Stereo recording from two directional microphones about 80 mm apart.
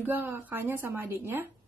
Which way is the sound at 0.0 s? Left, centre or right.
Right.